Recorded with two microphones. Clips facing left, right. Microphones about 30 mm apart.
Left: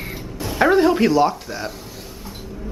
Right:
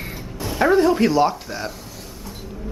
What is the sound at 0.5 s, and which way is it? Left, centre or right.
Speech, centre.